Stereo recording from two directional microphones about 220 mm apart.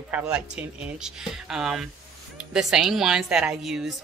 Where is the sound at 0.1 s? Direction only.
5° right (ahead or behind).